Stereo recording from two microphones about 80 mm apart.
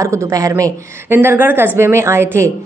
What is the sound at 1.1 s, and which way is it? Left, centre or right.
A woman's voice, right.